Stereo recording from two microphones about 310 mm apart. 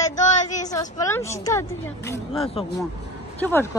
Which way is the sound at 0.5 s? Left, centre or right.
Centre.